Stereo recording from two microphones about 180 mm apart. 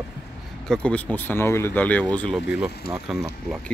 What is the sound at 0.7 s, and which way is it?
Speech, 5° left (ahead or behind).